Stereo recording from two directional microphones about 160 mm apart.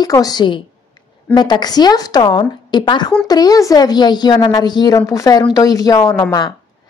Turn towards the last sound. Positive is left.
turn(degrees=20)  # may be behind; listen again after turning